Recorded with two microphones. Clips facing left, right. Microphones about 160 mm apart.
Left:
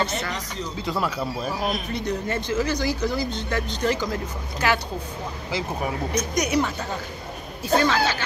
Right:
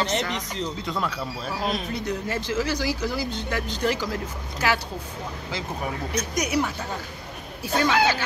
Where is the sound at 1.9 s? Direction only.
5° right (ahead or behind).